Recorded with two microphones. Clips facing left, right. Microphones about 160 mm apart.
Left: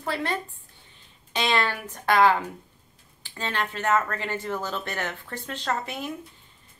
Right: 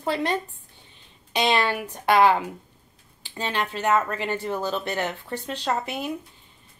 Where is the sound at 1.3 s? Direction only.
15° right (ahead or behind).